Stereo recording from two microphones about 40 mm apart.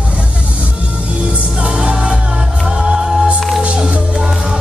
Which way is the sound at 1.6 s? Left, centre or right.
Right.